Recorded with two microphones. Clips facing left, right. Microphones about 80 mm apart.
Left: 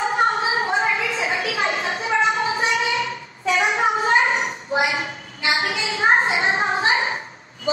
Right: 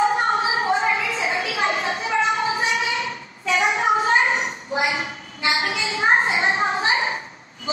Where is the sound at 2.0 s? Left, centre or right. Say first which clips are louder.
Left 4 dB; left.